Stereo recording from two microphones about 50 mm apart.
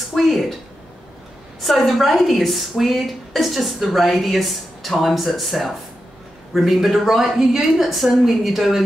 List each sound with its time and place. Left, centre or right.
0.1 s a woman's voice: centre
1.6 s a woman's voice: centre